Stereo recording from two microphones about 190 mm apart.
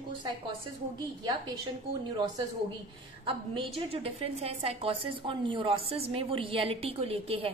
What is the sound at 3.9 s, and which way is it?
A woman's voice, 30° right (ahead or behind).